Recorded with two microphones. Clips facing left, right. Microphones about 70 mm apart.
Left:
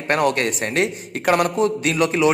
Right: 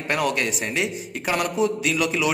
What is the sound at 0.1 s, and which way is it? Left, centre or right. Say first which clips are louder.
A man's voice: left 5 dB; left.